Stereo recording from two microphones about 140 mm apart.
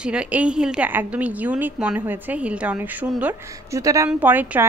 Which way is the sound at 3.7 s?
25° right (ahead or behind).